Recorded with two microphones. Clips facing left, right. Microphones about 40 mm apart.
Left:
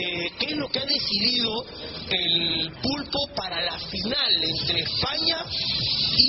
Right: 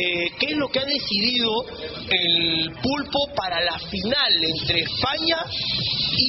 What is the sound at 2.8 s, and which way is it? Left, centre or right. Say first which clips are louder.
Speech: right 7 dB; right.